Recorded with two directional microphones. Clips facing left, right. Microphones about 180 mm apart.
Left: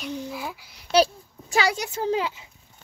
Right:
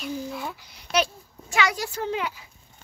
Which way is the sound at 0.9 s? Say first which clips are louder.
Left 5 dB; 35° left (ahead or behind).